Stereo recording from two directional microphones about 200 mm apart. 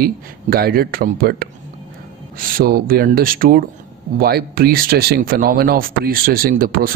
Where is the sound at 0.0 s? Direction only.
50° right (ahead or behind).